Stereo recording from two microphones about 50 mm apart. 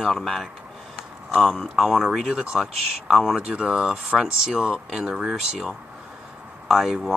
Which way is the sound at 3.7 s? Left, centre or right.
Centre.